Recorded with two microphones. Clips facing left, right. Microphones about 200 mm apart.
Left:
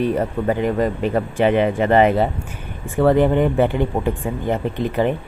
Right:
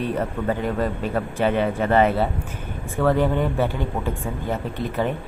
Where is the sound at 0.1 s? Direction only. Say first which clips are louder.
Left 4 dB; 10° left (ahead or behind).